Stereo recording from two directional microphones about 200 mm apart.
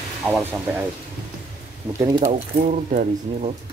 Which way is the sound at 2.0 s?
15° right (ahead or behind).